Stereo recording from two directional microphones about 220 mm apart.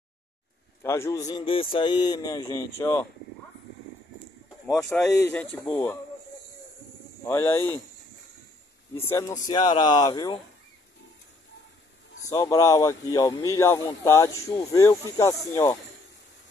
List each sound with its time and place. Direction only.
0.8 s a man's voice: 10° left (ahead or behind)
4.7 s a man's voice: 15° left (ahead or behind)
7.2 s a man's voice: 10° left (ahead or behind)
9.1 s speech: 20° left (ahead or behind)
12.3 s a man's voice: 15° left (ahead or behind)